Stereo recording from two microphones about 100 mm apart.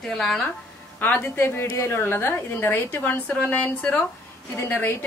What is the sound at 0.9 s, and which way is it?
A woman's voice, 15° left (ahead or behind).